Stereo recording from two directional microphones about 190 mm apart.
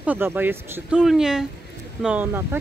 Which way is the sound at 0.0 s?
10° right (ahead or behind).